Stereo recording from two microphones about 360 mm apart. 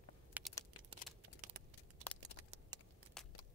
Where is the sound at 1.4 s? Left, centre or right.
Right.